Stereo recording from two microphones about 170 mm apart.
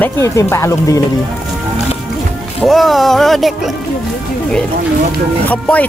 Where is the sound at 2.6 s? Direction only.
Centre (ahead or behind).